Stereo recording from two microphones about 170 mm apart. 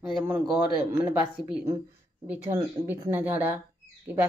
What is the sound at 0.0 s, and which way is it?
Speech, 5° right (ahead or behind).